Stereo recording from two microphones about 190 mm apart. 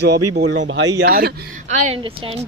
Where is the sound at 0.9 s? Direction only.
55° right (ahead or behind).